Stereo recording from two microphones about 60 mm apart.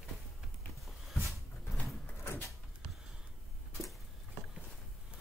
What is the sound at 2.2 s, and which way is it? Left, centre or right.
Door, left.